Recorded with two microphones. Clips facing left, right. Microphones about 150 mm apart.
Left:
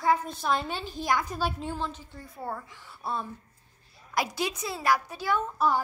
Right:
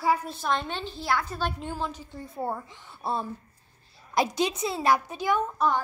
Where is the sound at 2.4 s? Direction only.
25° right (ahead or behind).